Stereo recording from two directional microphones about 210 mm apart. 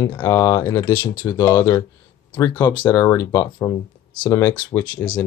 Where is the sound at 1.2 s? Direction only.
10° left (ahead or behind).